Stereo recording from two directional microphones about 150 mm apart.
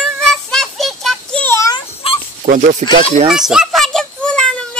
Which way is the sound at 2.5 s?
55° right (ahead or behind).